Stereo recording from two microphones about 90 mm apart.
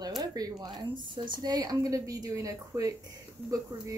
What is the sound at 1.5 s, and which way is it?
Speech, 45° right (ahead or behind).